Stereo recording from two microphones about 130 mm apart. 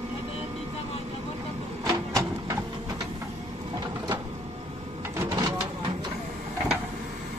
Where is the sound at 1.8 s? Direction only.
25° right (ahead or behind).